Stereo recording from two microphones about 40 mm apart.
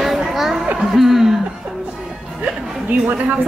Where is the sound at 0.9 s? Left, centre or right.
Centre.